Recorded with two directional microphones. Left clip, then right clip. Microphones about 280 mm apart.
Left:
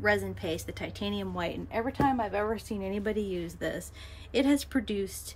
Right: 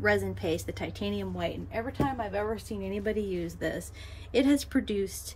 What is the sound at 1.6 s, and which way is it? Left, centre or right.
A woman's voice, left.